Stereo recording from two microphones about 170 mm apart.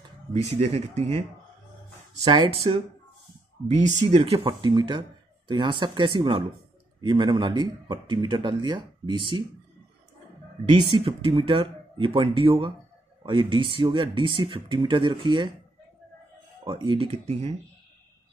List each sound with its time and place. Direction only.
0.6 s speech: 35° right (ahead or behind)
2.2 s speech: 30° right (ahead or behind)
10.6 s speech: 30° right (ahead or behind)
16.6 s speech: 30° right (ahead or behind)